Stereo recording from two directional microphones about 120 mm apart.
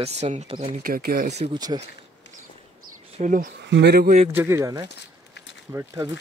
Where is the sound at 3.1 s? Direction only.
90° right.